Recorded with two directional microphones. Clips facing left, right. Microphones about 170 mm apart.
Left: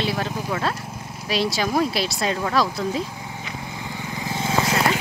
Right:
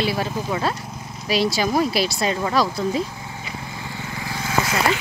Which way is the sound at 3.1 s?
15° left (ahead or behind).